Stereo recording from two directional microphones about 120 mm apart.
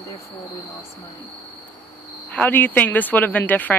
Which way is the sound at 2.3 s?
15° left (ahead or behind).